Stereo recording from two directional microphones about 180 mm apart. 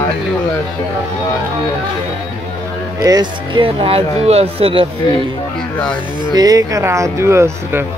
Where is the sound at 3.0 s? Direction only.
20° right (ahead or behind).